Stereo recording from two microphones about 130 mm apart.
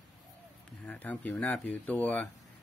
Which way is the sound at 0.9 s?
10° left (ahead or behind).